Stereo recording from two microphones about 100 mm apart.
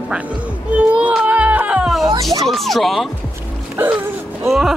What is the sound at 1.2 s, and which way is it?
Music, 15° right (ahead or behind).